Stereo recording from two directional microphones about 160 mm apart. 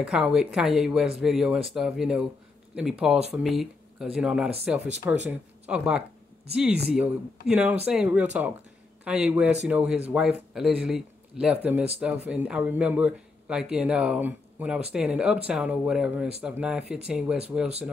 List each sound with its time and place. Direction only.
0.0 s speech: 5° right (ahead or behind)